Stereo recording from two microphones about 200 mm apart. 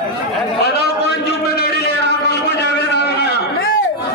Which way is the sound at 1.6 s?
55° left (ahead or behind).